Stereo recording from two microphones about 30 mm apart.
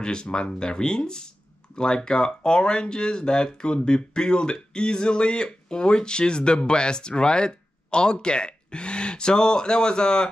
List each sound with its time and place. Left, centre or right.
0.0 s speech: left